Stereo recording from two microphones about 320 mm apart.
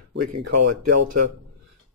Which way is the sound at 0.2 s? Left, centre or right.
Right.